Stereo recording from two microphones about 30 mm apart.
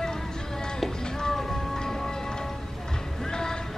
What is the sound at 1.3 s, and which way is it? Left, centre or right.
Music, centre.